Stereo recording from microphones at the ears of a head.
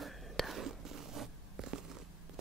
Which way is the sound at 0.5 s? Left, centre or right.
Right.